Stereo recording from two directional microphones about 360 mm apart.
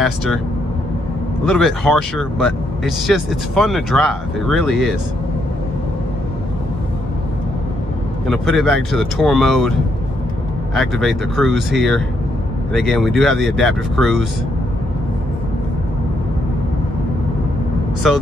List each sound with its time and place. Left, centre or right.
0.0 s speech: centre
1.4 s speech: centre
8.3 s speech: centre